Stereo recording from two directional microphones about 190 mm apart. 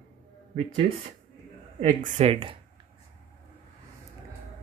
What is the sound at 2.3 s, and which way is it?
Speech, 30° right (ahead or behind).